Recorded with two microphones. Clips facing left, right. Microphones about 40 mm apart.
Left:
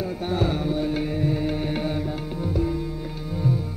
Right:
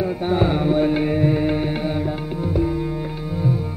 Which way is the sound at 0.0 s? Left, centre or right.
Right.